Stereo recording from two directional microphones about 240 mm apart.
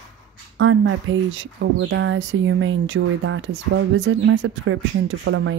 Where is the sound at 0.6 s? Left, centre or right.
Right.